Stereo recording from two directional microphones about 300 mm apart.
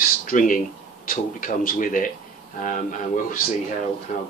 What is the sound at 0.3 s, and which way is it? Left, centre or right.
Speech, left.